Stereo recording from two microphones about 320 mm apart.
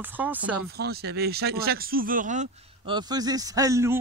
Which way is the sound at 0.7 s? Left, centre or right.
Right.